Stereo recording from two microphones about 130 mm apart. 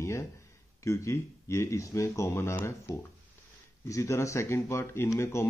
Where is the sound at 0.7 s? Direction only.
25° left (ahead or behind).